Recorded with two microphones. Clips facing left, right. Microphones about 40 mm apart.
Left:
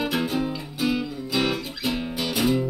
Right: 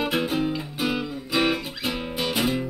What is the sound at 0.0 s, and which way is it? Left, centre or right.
Music, centre.